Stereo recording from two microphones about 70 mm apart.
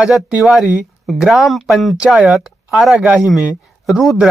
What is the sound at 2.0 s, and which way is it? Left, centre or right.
Speech, centre.